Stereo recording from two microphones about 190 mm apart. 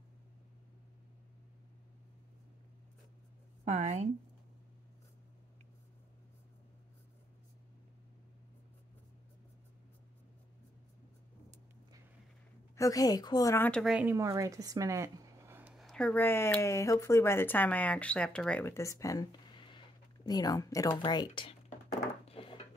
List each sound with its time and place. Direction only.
3.6 s a woman's voice: 35° right (ahead or behind)
12.7 s speech: 20° left (ahead or behind)
13.7 s speech: centre (ahead or behind); by 21.5 s 25° left (ahead or behind)
22.2 s a sound: 30° left (ahead or behind)